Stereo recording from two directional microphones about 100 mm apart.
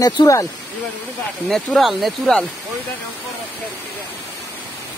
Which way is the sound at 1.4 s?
Centre (ahead or behind).